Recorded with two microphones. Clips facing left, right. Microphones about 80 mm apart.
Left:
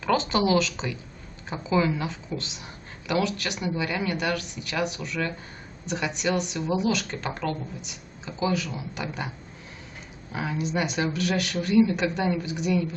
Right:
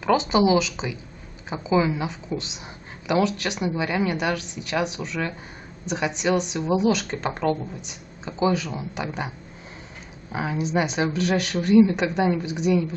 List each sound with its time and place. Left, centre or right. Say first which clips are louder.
0.0 s a woman's voice: right 4 dB; centre
6.7 s speech: right 5 dB; right
10.3 s speech: right 4 dB; right